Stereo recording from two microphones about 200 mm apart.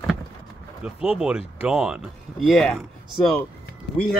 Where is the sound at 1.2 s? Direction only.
5° right (ahead or behind).